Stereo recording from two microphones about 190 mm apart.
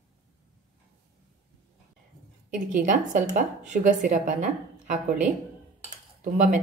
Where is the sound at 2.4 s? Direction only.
40° right (ahead or behind).